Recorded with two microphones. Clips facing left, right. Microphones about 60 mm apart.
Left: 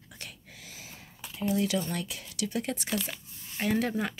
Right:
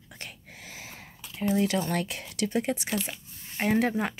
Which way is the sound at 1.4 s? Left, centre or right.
Right.